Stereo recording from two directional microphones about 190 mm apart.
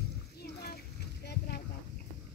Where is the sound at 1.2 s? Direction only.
55° left (ahead or behind).